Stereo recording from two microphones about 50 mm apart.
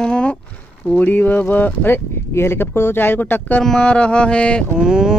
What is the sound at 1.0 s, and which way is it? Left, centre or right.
Speech, left.